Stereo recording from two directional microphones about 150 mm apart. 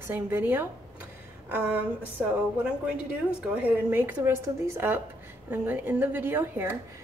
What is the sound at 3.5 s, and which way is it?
A woman's voice, 10° right (ahead or behind).